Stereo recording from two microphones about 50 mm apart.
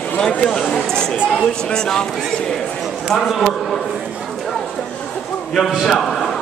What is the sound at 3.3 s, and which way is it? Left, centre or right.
Speech, centre.